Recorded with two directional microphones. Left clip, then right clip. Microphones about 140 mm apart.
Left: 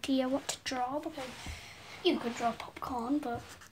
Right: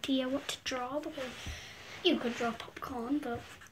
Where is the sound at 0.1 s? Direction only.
30° left (ahead or behind).